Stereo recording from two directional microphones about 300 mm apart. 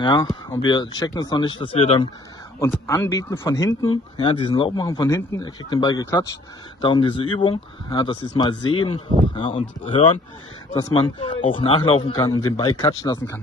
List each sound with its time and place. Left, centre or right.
0.0 s speech: centre